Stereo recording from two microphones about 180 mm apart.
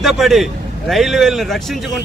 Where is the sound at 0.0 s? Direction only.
Centre (ahead or behind).